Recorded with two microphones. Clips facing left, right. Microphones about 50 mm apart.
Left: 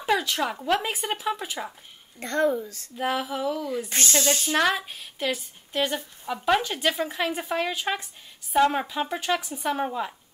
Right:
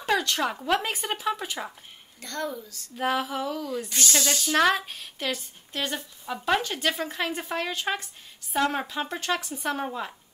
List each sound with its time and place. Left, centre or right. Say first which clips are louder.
0.0 s a woman's voice: left 1 dB; centre
2.1 s a woman's voice: left 9 dB; left
3.0 s a woman's voice: even; centre
4.2 s a woman's voice: left 2 dB; left
4.6 s a woman's voice: right 4 dB; centre